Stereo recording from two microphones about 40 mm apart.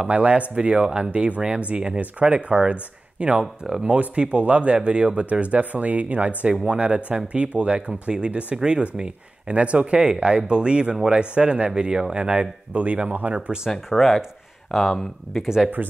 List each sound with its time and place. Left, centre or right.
0.0 s speech: right
13.8 s speech: centre
15.4 s speech: centre